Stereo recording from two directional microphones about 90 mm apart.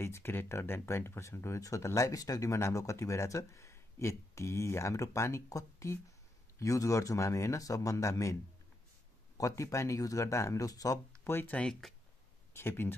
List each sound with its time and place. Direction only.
0.0 s speech: 25° left (ahead or behind)
9.4 s speech: 35° left (ahead or behind)
11.2 s speech: 25° left (ahead or behind)
11.5 s speech: 10° left (ahead or behind)
12.5 s speech: 25° left (ahead or behind)